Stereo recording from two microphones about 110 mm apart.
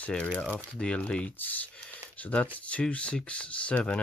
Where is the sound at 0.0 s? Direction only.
10° left (ahead or behind).